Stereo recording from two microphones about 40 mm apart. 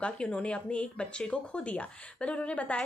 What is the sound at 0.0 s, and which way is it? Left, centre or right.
Speech, left.